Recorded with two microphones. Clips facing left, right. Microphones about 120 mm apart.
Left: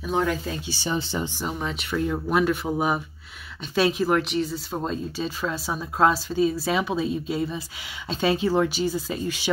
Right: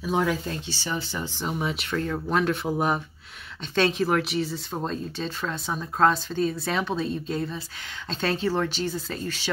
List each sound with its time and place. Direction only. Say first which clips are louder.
0.0 s speech: even; centre (ahead or behind)
0.7 s speech: left 4 dB; 20° left (ahead or behind)
1.4 s speech: right 1 dB; 5° right (ahead or behind)
1.9 s speech: left 5 dB; 10° left (ahead or behind)